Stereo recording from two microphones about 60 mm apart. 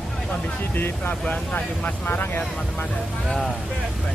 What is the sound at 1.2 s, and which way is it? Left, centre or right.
Speech, left.